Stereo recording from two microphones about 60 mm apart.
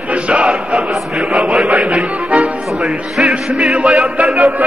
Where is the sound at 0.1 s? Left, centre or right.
Centre.